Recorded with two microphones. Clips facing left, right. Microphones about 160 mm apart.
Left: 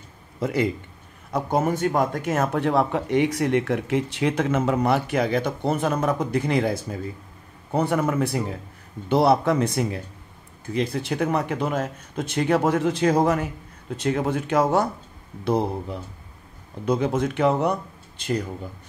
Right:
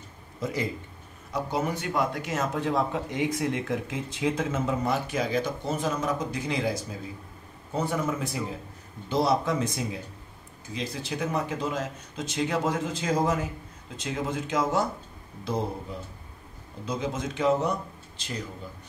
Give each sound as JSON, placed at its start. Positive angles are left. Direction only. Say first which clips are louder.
{"t": 0.4, "sound": "speech", "louder": "left 7 dB", "side_deg": 65}
{"t": 1.3, "sound": "speech", "louder": "left 6 dB", "side_deg": 50}
{"t": 16.8, "sound": "speech", "louder": "left 8 dB", "side_deg": 60}